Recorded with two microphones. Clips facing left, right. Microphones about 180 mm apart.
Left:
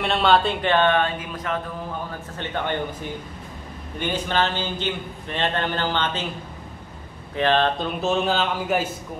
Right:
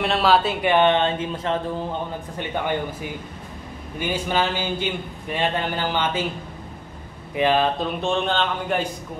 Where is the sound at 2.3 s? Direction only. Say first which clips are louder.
Right 1 dB; 10° right (ahead or behind).